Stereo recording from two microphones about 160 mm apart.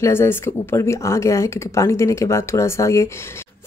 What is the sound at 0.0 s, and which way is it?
Speech, 15° left (ahead or behind).